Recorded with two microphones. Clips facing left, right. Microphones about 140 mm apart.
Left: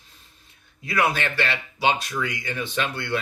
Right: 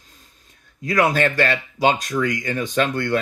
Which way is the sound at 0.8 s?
45° right (ahead or behind).